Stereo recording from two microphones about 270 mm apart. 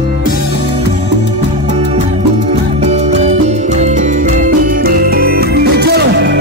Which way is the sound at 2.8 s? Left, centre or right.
Right.